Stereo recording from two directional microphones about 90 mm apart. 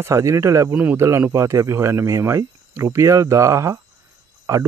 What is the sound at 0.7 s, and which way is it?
Speech, 20° right (ahead or behind).